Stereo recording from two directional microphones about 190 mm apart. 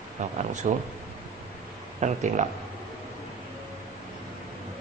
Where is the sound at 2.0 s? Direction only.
40° right (ahead or behind).